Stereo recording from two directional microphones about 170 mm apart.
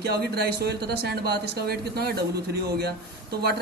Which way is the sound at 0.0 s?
70° right (ahead or behind).